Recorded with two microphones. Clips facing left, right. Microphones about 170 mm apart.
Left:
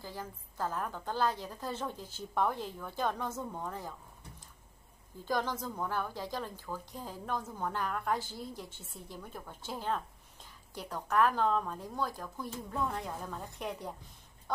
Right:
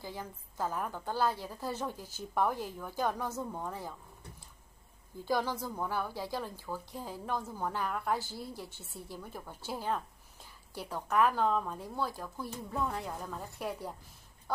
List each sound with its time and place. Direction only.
0.6 s a woman's voice: 10° right (ahead or behind)
5.2 s a woman's voice: 10° right (ahead or behind)